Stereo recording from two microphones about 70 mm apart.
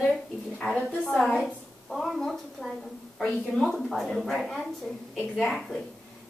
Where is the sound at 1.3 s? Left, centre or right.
Centre.